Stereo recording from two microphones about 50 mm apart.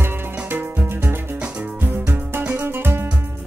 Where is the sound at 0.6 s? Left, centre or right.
Right.